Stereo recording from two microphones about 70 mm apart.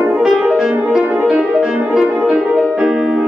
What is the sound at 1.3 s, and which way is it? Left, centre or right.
Music, centre.